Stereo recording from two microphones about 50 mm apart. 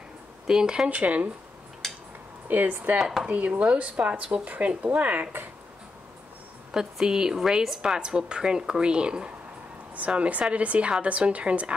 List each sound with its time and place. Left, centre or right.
0.5 s speech: centre
0.8 s speech: right
1.8 s a sound: centre
2.4 s speech: right
3.0 s speech: centre
3.3 s speech: right
6.7 s speech: centre